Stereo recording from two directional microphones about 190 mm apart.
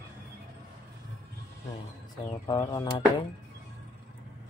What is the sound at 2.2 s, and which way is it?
Speech, 20° left (ahead or behind).